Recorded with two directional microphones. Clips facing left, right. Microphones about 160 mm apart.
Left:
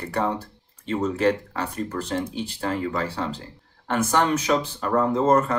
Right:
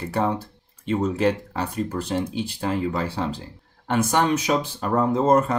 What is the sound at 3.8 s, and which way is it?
Speech, 15° right (ahead or behind).